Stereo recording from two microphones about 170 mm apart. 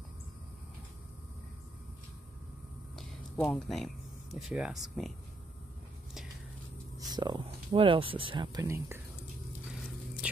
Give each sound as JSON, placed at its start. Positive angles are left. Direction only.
{"t": 3.4, "sound": "speech", "side_deg": 0}
{"t": 7.0, "sound": "speech", "side_deg": -25}
{"t": 8.6, "sound": "speech", "side_deg": -15}
{"t": 9.7, "sound": "a sound", "side_deg": -5}